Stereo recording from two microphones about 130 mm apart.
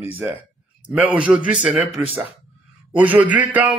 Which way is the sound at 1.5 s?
10° right (ahead or behind).